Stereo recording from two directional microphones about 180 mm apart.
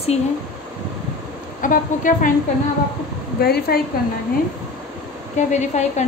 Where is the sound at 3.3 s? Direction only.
60° left (ahead or behind).